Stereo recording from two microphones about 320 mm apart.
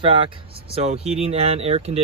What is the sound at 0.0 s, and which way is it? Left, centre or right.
Speech, centre.